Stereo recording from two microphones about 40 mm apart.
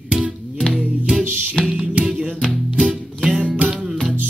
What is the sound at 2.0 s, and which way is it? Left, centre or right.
Music, right.